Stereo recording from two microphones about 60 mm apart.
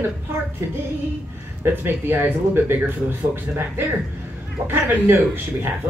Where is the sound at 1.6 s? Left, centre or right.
Right.